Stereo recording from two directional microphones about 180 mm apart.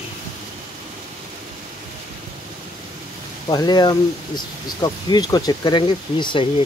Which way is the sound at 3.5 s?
20° left (ahead or behind).